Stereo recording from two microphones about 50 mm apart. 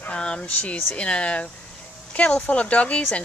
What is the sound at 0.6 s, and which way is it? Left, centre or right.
Speech, left.